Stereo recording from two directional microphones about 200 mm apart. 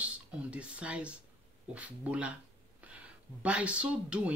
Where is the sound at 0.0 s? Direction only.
5° right (ahead or behind).